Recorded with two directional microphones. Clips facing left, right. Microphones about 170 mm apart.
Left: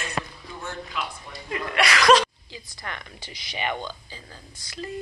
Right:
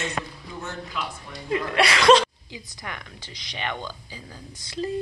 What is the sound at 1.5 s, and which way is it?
A woman's voice, 30° right (ahead or behind).